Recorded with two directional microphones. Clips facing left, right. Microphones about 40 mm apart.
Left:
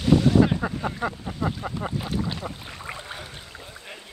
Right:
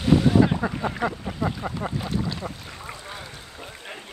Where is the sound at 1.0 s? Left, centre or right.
Right.